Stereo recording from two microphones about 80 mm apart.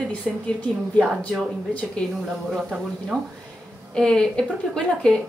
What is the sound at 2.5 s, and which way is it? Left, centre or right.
Speech, centre.